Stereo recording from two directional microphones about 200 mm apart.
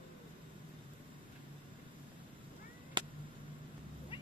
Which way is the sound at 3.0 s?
25° right (ahead or behind).